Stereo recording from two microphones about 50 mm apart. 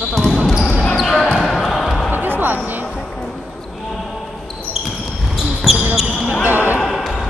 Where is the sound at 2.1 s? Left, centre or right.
Right.